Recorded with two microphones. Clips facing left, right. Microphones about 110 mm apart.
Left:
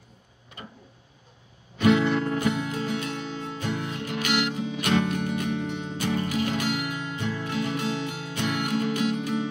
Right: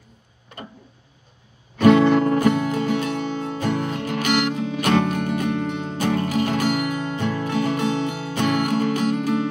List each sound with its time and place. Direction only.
1.8 s music: 60° right (ahead or behind); by 4.4 s 45° right (ahead or behind)
4.5 s music: 60° right (ahead or behind)
7.2 s music: 60° right (ahead or behind)